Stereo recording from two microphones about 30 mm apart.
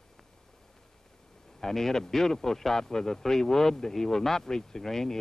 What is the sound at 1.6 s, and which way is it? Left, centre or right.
Speech, centre.